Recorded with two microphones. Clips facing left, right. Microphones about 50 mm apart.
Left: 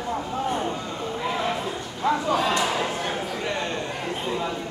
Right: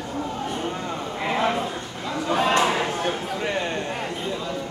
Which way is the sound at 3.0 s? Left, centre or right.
Centre.